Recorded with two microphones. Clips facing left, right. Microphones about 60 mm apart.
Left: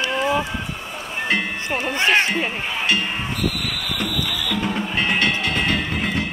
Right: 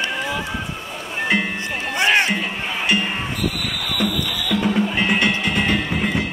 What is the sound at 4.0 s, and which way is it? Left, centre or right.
Music, centre.